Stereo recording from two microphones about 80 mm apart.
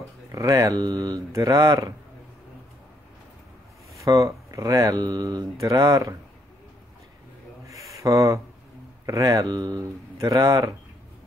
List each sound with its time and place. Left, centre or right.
0.3 s speech: right
1.3 s speech: right
4.0 s speech: right
7.6 s a sound: right
8.0 s speech: right
9.8 s speech: right